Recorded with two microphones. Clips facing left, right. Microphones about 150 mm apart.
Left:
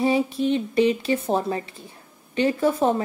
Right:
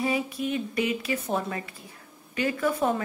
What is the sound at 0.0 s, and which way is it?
Speech, 30° left (ahead or behind).